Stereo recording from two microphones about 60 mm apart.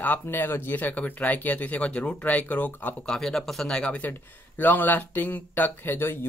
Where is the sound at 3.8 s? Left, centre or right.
Left.